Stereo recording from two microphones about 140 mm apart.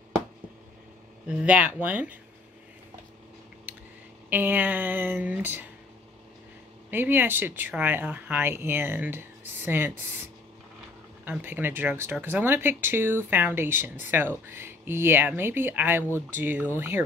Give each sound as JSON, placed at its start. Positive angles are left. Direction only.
{"t": 1.2, "sound": "speech", "side_deg": -10}
{"t": 4.3, "sound": "speech", "side_deg": -15}
{"t": 6.9, "sound": "speech", "side_deg": -15}
{"t": 11.2, "sound": "speech", "side_deg": -15}